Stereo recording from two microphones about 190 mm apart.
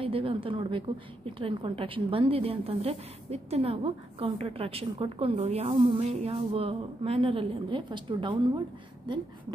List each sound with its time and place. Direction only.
0.0 s a woman's voice: 30° right (ahead or behind)